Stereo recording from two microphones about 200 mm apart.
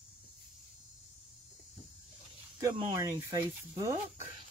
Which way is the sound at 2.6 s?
20° right (ahead or behind).